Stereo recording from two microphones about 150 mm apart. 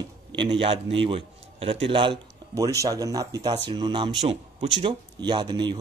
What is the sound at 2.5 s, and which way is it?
Speech, 20° right (ahead or behind).